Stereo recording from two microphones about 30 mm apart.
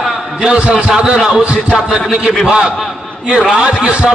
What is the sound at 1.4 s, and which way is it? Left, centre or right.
A man's voice, right.